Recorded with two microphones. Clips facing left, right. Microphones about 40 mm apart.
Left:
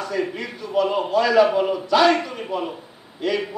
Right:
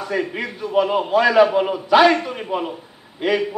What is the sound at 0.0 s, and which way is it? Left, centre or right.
Speech, right.